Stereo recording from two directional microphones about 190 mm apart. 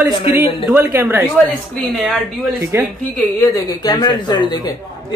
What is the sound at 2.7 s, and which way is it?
Speech, 15° right (ahead or behind).